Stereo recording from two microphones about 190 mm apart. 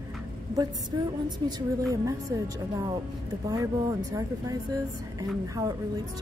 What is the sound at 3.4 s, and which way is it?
A woman's voice, 15° right (ahead or behind).